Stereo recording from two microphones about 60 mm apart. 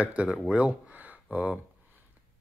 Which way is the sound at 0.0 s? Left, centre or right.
Right.